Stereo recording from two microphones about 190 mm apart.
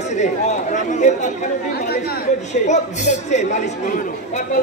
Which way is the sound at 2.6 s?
40° left (ahead or behind).